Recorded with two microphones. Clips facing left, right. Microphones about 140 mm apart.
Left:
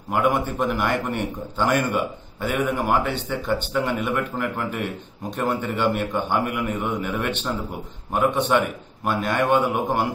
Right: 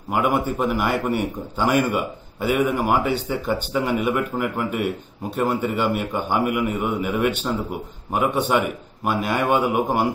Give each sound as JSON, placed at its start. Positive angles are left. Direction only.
{"t": 0.1, "sound": "a man's voice", "side_deg": -5}